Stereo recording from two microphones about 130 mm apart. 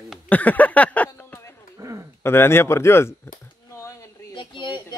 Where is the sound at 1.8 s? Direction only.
25° right (ahead or behind).